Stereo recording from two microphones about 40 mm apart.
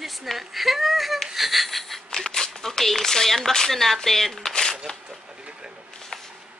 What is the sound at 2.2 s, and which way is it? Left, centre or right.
Speech, centre.